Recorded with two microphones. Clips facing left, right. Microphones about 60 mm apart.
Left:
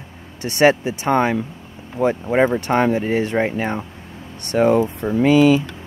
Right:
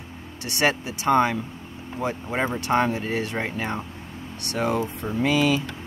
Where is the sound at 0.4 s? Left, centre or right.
Left.